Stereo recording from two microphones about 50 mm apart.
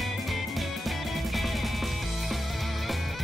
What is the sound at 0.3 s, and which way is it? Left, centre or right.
Music, centre.